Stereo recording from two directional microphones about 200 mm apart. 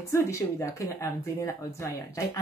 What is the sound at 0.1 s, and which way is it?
Speech, 15° left (ahead or behind).